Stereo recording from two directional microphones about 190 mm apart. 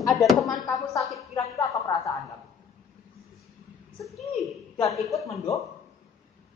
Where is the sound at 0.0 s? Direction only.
Centre (ahead or behind).